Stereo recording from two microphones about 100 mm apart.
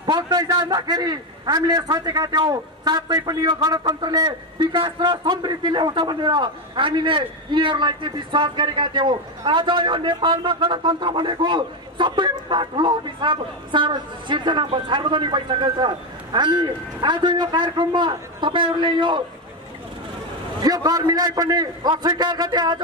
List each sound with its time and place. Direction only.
0.0 s a man's voice: 50° right (ahead or behind)
20.6 s a man's voice: 40° right (ahead or behind)